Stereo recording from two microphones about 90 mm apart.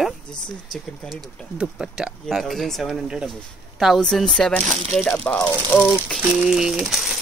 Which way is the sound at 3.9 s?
5° left (ahead or behind).